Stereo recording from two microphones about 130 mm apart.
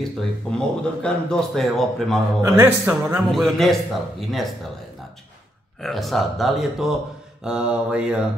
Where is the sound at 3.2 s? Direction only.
Centre (ahead or behind).